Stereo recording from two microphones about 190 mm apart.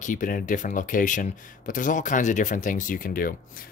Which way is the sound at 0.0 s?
45° left (ahead or behind).